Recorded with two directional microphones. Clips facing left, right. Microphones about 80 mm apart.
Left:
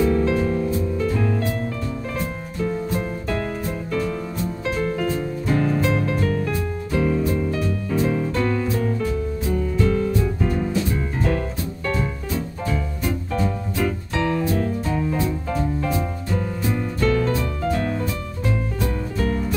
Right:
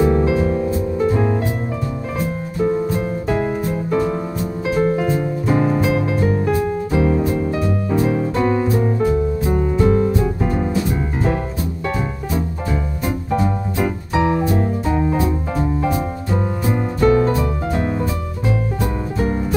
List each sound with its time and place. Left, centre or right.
0.0 s music: right
2.6 s music: right
13.3 s music: right
17.0 s music: right